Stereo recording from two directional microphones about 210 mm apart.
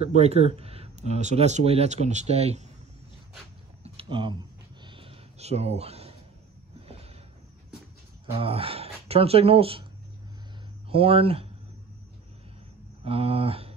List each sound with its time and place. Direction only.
0.0 s speech: 30° right (ahead or behind)
3.8 s a sound: 25° right (ahead or behind)
8.3 s speech: 25° right (ahead or behind)
10.9 s speech: 25° right (ahead or behind)
13.0 s speech: 25° right (ahead or behind)